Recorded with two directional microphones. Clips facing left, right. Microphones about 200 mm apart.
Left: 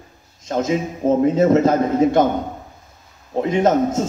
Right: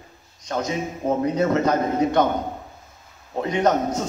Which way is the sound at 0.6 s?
25° left (ahead or behind).